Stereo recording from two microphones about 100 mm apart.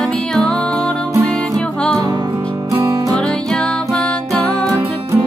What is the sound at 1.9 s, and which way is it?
Music, 40° right (ahead or behind).